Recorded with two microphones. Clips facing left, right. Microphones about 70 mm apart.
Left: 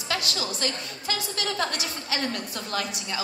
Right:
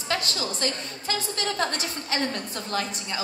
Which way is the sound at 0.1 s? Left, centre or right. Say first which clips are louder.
Right 1 dB; right.